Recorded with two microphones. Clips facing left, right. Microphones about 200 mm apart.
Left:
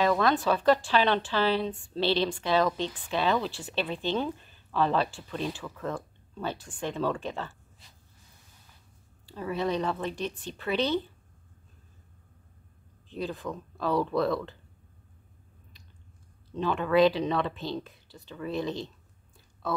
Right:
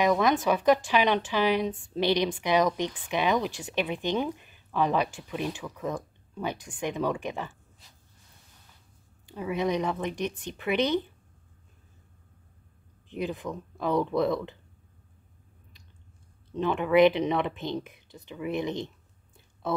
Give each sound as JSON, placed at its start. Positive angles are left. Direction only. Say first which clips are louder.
{"t": 0.0, "sound": "speech", "louder": "right 1 dB", "side_deg": -15}
{"t": 9.3, "sound": "speech", "louder": "right 2 dB", "side_deg": -15}
{"t": 13.1, "sound": "speech", "louder": "right 2 dB", "side_deg": -15}
{"t": 16.5, "sound": "speech", "louder": "right 2 dB", "side_deg": -20}